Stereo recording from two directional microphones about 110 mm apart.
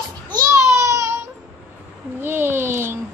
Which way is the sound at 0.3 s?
30° right (ahead or behind).